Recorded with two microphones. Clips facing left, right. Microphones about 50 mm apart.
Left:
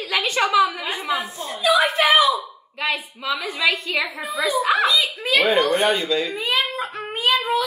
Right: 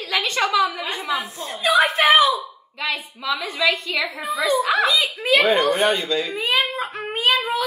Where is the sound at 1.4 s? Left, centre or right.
Right.